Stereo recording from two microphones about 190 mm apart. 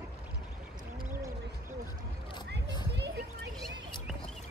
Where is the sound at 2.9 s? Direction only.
60° right (ahead or behind).